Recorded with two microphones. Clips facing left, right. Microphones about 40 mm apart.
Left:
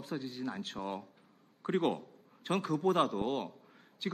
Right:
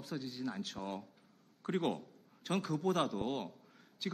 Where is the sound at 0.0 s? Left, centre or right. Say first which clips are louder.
Left 2 dB; centre.